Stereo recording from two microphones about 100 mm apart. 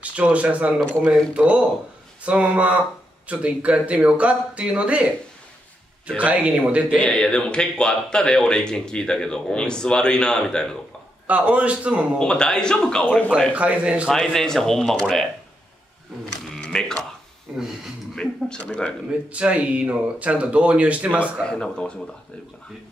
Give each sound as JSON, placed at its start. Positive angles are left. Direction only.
{"t": 0.0, "sound": "speech", "side_deg": -15}
{"t": 6.0, "sound": "speech", "side_deg": -15}
{"t": 7.0, "sound": "speech", "side_deg": 10}
{"t": 11.2, "sound": "speech", "side_deg": -15}
{"t": 12.2, "sound": "speech", "side_deg": 5}
{"t": 13.6, "sound": "speech", "side_deg": -15}
{"t": 14.0, "sound": "speech", "side_deg": 5}
{"t": 16.5, "sound": "a sound", "side_deg": 5}
{"t": 17.5, "sound": "speech", "side_deg": -15}
{"t": 18.1, "sound": "speech", "side_deg": 10}
{"t": 19.2, "sound": "speech", "side_deg": -10}
{"t": 21.5, "sound": "speech", "side_deg": 10}